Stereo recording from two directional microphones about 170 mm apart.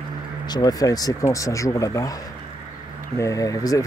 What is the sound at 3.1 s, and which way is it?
Speech, 20° left (ahead or behind).